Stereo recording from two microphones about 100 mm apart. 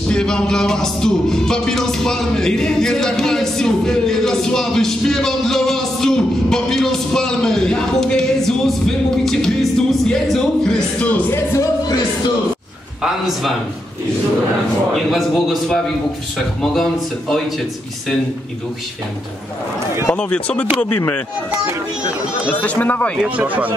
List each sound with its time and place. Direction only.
0.1 s music: 5° left (ahead or behind)
13.0 s music: centre (ahead or behind)
15.0 s music: centre (ahead or behind)
20.1 s speech: 10° left (ahead or behind)
22.6 s speech: 15° left (ahead or behind)
23.2 s speech: 15° right (ahead or behind)